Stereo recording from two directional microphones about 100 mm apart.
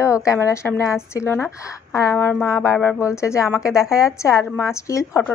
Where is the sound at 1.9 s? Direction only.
30° left (ahead or behind).